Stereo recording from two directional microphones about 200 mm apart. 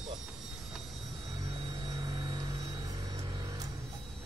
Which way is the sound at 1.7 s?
25° right (ahead or behind).